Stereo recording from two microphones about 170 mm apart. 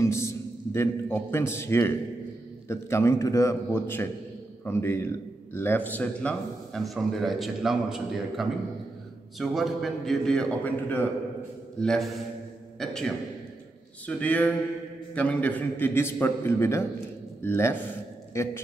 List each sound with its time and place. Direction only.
0.0 s a man's voice: 15° left (ahead or behind)